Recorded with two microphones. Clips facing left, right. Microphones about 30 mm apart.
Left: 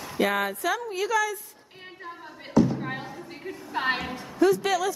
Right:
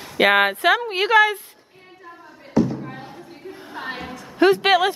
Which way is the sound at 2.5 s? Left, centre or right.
Centre.